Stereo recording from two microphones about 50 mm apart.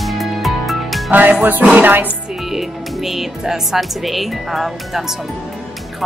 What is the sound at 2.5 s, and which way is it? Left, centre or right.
Speech, centre.